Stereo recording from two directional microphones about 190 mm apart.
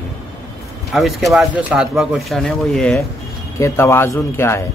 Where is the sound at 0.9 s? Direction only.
Centre (ahead or behind).